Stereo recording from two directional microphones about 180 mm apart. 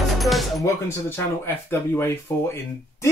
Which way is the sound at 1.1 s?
15° left (ahead or behind).